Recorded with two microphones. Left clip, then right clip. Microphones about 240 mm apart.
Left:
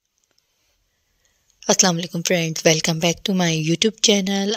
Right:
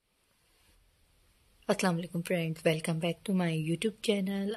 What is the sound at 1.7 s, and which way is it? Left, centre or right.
A woman's voice, left.